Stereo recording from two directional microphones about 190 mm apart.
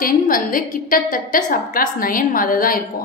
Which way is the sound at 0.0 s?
45° left (ahead or behind).